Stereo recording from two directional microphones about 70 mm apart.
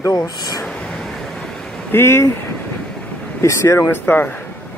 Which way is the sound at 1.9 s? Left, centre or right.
Left.